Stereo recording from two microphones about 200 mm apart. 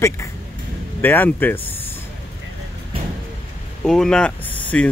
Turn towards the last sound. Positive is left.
turn(degrees=10)  # may be behind; listen again after turning